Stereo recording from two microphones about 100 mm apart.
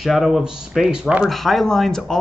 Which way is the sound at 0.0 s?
5° right (ahead or behind).